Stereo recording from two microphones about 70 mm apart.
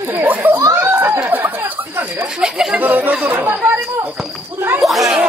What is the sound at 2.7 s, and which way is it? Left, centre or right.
Speech, right.